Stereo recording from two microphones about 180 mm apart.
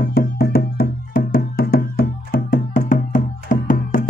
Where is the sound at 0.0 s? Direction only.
60° left (ahead or behind).